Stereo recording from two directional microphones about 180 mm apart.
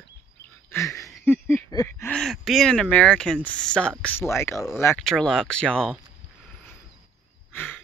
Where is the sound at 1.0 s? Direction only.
Centre (ahead or behind).